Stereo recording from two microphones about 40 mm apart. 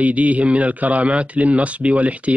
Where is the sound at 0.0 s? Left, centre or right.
Right.